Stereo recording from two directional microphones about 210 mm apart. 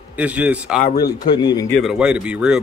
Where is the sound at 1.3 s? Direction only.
20° left (ahead or behind).